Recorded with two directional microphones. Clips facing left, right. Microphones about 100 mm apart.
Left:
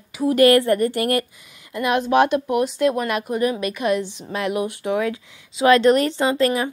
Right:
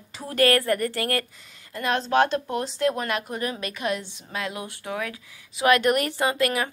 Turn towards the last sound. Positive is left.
turn(degrees=25)  # may be behind; listen again after turning